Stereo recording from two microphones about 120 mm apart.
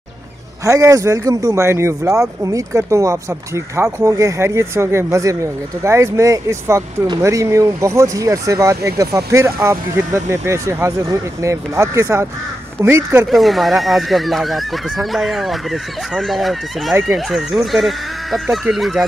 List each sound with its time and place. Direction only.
0.7 s speech: 25° right (ahead or behind)
13.3 s speech: centre (ahead or behind)